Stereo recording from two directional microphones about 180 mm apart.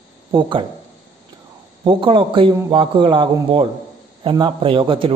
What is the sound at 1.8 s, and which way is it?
A man's voice, 25° right (ahead or behind).